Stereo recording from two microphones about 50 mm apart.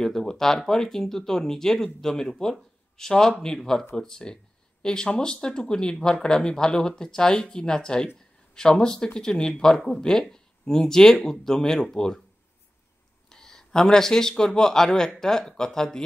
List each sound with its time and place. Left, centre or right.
0.0 s speech: centre
13.3 s speech: centre